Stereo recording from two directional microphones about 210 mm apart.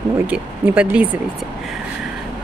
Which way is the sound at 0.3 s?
5° right (ahead or behind).